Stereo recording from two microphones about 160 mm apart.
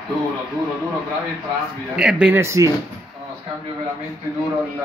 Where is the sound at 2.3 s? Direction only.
15° right (ahead or behind).